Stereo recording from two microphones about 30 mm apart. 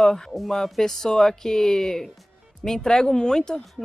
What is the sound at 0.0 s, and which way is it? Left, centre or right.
Speech, centre.